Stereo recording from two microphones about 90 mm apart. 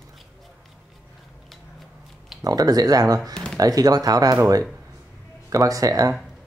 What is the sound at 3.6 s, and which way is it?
Speech, 45° right (ahead or behind).